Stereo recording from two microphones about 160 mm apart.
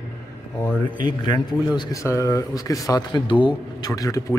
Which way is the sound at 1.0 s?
25° left (ahead or behind).